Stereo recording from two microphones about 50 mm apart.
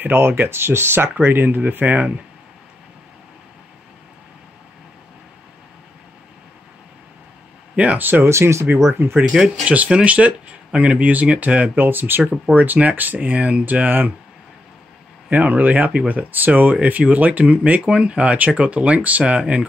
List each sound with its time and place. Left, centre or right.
0.0 s speech: right
1.2 s speech: right
7.7 s speech: right
8.0 s speech: right
8.3 s speech: right
9.0 s speech: right
9.7 s speech: right
11.8 s speech: right
15.2 s speech: right